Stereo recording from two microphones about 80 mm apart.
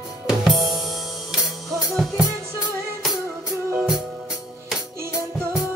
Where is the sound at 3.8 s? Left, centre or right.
Centre.